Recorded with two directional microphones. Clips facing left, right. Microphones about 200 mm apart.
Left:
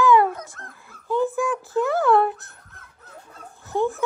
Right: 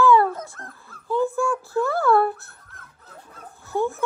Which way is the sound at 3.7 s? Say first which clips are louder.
Left 1 dB; 15° left (ahead or behind).